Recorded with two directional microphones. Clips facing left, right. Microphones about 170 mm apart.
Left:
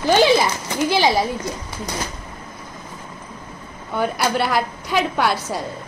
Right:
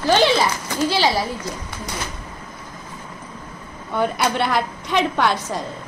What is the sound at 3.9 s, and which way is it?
A woman's voice, 5° left (ahead or behind).